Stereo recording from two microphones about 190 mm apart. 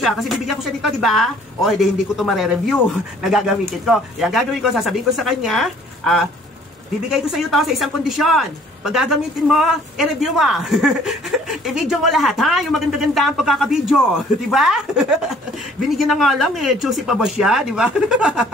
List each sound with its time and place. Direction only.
0.0 s speech: centre (ahead or behind)